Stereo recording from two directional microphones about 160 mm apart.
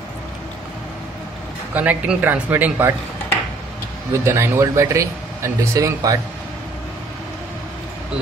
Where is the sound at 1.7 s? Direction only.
10° right (ahead or behind).